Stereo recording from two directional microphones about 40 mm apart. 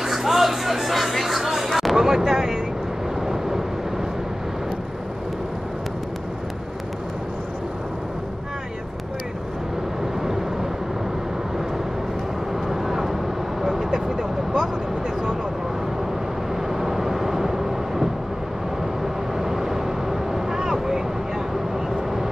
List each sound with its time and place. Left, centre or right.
0.0 s music: centre
2.0 s a sound: centre
3.2 s vehicle: centre
10.2 s vehicle: centre
12.6 s vehicle: centre
16.7 s vehicle: centre
19.3 s vehicle: centre